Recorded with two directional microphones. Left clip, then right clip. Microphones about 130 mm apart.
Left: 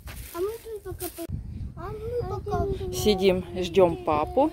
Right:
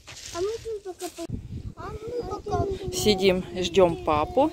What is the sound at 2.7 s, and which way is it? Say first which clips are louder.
Speech: even; 10° left (ahead or behind).